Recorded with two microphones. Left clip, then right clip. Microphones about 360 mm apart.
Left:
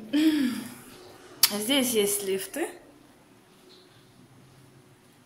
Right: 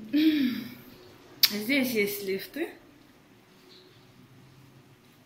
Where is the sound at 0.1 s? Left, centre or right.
Centre.